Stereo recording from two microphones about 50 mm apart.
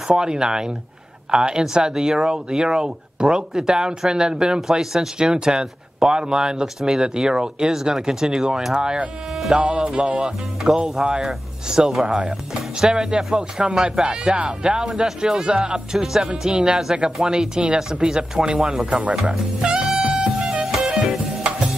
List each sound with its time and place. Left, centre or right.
0.1 s speech: centre
10.2 s speech: centre
18.9 s speech: right
20.0 s music: centre